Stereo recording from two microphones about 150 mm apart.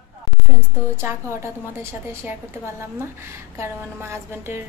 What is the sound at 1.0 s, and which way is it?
A woman's voice, 15° right (ahead or behind).